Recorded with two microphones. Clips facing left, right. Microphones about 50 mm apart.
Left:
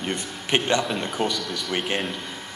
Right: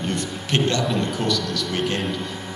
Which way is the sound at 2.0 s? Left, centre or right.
Centre.